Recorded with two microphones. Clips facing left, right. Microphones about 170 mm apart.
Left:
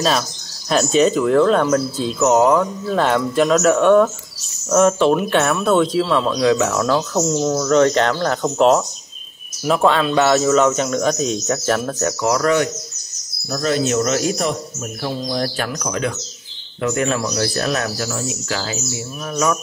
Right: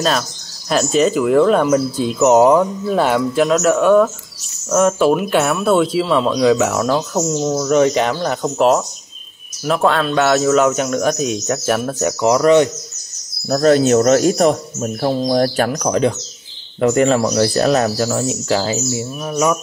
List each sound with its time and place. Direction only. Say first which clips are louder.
0.7 s speech: even; centre (ahead or behind); by 12.6 s 20° right (ahead or behind)
13.5 s speech: right 7 dB; 45° right (ahead or behind); by 18.9 s 30° right (ahead or behind)
19.2 s speech: right 2 dB; 15° right (ahead or behind)